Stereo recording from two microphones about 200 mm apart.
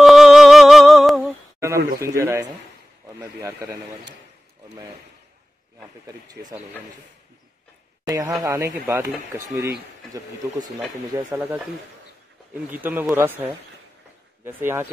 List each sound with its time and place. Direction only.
0.0 s music: centre (ahead or behind)
2.0 s speech: 15° right (ahead or behind)
8.4 s speech: 15° right (ahead or behind)
11.1 s speech: 15° right (ahead or behind)
12.8 s speech: 10° right (ahead or behind)